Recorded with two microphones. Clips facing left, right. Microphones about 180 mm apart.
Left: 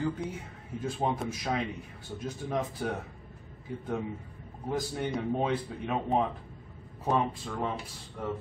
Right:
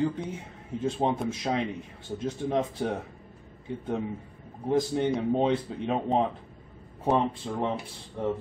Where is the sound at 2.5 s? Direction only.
25° right (ahead or behind).